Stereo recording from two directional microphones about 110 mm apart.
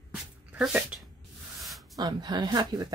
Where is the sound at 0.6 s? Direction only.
10° right (ahead or behind).